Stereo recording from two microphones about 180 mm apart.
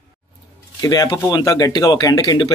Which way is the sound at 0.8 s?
20° left (ahead or behind).